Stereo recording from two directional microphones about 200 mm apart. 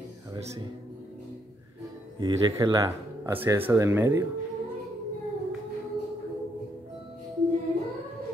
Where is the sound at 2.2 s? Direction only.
20° right (ahead or behind).